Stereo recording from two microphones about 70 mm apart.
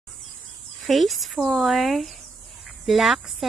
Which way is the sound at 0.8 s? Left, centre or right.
Centre.